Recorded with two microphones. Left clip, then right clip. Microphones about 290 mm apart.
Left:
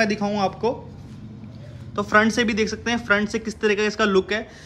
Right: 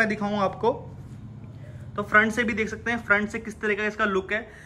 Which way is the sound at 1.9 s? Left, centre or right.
Centre.